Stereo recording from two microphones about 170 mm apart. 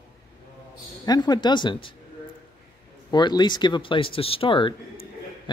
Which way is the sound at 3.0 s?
25° left (ahead or behind).